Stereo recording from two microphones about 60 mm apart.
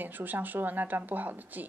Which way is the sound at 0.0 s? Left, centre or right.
Right.